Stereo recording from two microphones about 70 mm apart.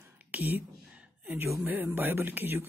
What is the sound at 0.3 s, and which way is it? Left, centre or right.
Speech, right.